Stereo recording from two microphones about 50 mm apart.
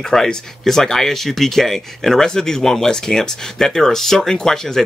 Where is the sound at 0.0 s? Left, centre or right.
Centre.